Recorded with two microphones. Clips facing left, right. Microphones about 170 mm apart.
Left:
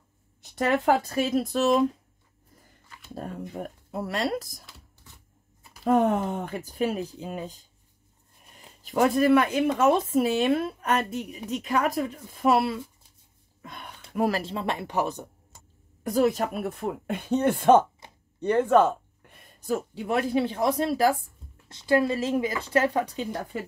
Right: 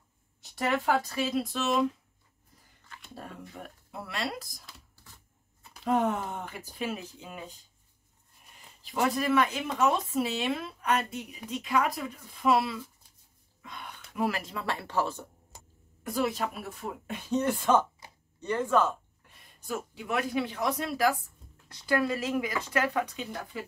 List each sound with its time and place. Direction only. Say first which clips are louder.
0.7 s speech: left 4 dB; 50° left (ahead or behind)
3.2 s speech: left 9 dB; 40° left (ahead or behind)
5.9 s speech: left 5 dB; 50° left (ahead or behind)
8.8 s speech: left 7 dB; 50° left (ahead or behind)
13.6 s a sound: left 2 dB; 45° left (ahead or behind)
14.1 s speech: left 5 dB; 45° left (ahead or behind)
14.4 s speech: left 5 dB; 25° left (ahead or behind)
16.0 s speech: left 7 dB; 40° left (ahead or behind); by 17.8 s 60° left (ahead or behind)
18.4 s a sound: left 6 dB; 60° left (ahead or behind)
19.6 s speech: left 7 dB; 35° left (ahead or behind)